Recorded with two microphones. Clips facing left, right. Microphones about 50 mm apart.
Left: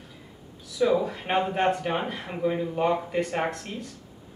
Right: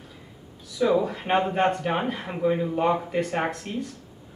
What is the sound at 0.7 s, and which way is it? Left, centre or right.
A man's voice, centre.